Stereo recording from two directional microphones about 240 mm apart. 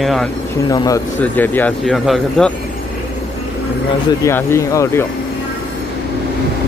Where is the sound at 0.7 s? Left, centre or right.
Centre.